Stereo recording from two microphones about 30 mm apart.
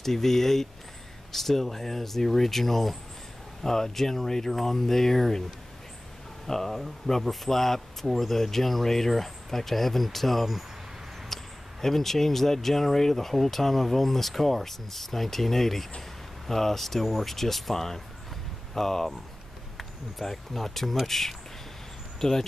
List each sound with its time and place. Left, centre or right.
0.0 s speech: centre
6.4 s speech: centre
11.3 s a sound: centre
11.8 s speech: centre